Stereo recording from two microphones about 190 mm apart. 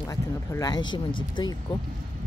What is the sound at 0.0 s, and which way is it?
Speech, 15° left (ahead or behind).